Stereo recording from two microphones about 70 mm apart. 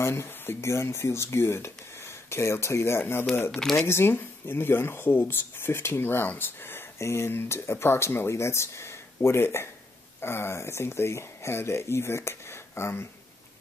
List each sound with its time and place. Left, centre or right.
0.0 s speech: left
3.5 s speech: centre
3.8 s speech: left